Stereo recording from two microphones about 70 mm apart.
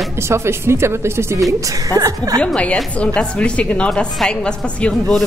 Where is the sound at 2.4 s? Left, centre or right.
Centre.